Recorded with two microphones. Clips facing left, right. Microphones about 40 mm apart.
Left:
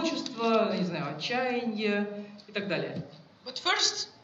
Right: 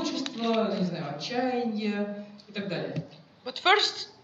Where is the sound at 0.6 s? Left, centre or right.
Left.